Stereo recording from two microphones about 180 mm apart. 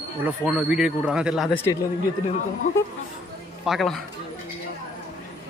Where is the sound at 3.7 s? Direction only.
Centre (ahead or behind).